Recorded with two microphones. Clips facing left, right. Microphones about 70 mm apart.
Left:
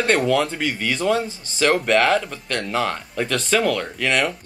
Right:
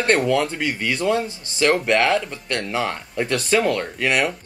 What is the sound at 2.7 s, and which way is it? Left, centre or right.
Speech, centre.